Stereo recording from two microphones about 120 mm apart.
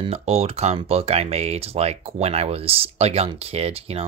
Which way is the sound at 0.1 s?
60° right (ahead or behind).